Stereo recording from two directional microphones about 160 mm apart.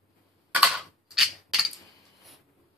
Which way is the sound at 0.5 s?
5° right (ahead or behind).